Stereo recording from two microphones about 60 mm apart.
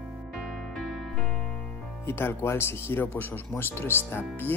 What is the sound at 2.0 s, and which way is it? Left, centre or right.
Speech, left.